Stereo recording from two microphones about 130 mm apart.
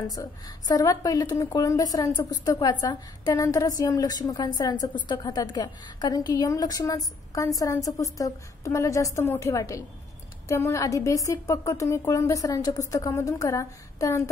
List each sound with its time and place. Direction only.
0.0 s a woman's voice: 30° left (ahead or behind)